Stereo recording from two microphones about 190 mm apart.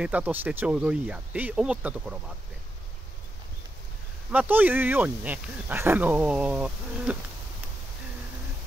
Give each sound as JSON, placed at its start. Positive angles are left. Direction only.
{"t": 0.0, "sound": "speech", "side_deg": -10}
{"t": 4.3, "sound": "speech", "side_deg": -10}